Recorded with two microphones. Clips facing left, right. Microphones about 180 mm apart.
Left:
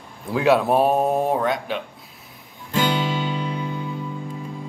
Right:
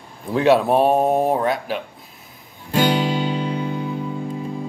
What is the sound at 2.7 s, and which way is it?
Music, 40° right (ahead or behind).